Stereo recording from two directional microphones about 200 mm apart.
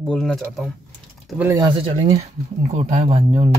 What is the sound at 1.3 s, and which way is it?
Speech, 15° right (ahead or behind).